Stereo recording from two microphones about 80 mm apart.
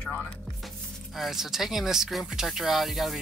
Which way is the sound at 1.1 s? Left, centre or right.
Centre.